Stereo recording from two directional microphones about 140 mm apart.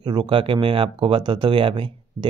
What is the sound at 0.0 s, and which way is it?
Speech, 30° right (ahead or behind).